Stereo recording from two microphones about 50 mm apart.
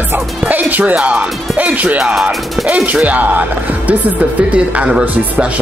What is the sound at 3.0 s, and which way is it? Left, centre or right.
Speech, right.